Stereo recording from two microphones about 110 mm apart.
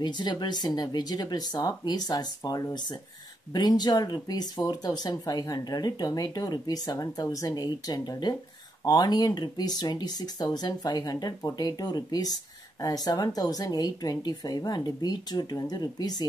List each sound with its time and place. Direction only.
0.0 s speech: 40° left (ahead or behind)